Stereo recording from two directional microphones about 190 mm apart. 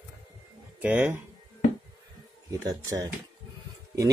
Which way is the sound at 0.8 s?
10° right (ahead or behind).